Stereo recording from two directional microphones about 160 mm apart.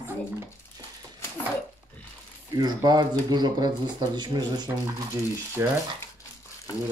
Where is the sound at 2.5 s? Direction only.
25° right (ahead or behind).